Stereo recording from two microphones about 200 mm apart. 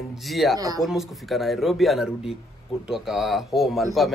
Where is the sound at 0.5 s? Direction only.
20° right (ahead or behind).